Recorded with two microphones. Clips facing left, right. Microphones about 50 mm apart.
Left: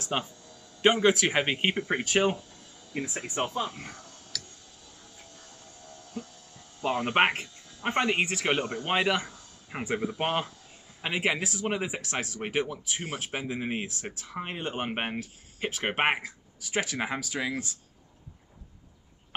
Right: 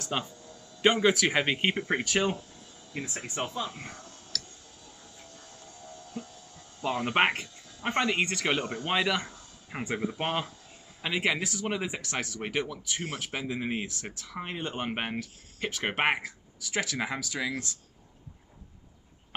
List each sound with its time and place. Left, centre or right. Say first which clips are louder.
0.1 s speech: left 2 dB; centre
0.7 s speech: left 1 dB; centre
2.0 s speech: left 3 dB; centre
3.7 s speech: even; centre
5.3 s music: right 1 dB; centre
6.9 s speech: left 1 dB; centre